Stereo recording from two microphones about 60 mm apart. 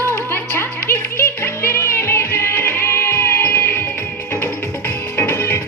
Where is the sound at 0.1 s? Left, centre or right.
Left.